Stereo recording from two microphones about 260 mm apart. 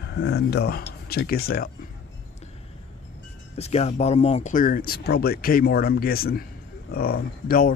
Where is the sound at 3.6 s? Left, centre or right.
Left.